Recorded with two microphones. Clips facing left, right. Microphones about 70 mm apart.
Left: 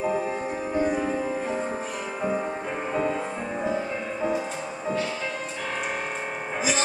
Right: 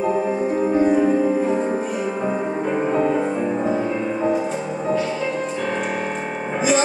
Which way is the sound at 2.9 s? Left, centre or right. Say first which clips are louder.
Right 5 dB; right.